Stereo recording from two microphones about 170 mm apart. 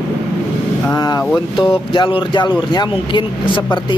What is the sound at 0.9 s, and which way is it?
Speech, 25° left (ahead or behind).